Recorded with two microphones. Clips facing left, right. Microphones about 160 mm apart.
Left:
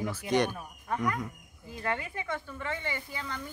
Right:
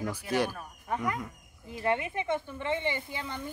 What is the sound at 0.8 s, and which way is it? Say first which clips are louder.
A woman's voice: left 1 dB; 20° right (ahead or behind).